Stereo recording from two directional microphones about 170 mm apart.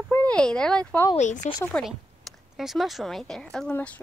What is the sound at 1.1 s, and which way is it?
Speech, 45° left (ahead or behind).